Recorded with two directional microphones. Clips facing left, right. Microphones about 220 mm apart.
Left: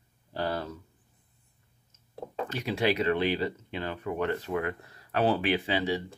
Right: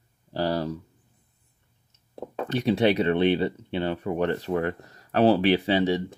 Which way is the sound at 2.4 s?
35° right (ahead or behind).